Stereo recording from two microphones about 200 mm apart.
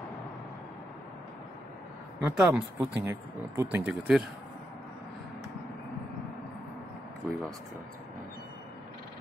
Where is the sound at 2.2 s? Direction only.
5° right (ahead or behind).